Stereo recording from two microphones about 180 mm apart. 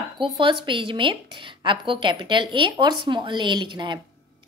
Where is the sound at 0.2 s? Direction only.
25° right (ahead or behind).